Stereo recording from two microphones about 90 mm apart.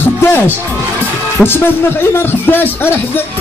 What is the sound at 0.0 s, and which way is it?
Music, 25° left (ahead or behind).